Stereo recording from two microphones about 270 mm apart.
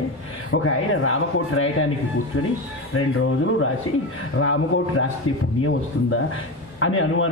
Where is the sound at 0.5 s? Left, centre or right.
Left.